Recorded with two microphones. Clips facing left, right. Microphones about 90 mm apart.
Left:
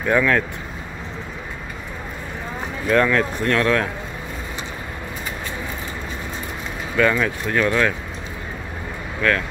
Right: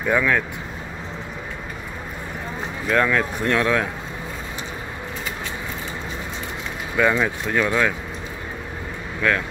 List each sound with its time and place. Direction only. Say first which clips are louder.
0.0 s speech: left 2 dB; 5° right (ahead or behind)
2.9 s speech: left 2 dB; 5° right (ahead or behind)
7.0 s speech: left 1 dB; 15° right (ahead or behind)
9.2 s speech: left 1 dB; 15° right (ahead or behind)